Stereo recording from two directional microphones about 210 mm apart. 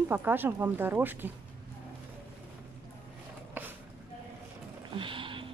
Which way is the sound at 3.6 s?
10° right (ahead or behind).